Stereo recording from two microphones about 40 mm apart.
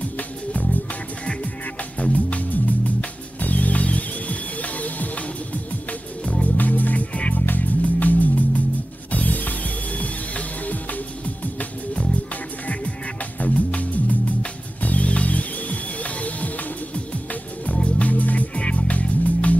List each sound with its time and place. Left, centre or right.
0.2 s music: left
12.6 s music: left
18.5 s music: left